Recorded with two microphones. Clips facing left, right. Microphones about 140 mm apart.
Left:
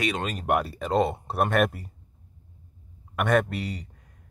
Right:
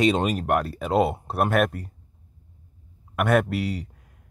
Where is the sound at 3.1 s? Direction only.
5° right (ahead or behind).